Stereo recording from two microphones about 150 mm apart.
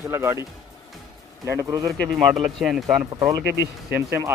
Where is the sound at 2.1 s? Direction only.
Centre (ahead or behind).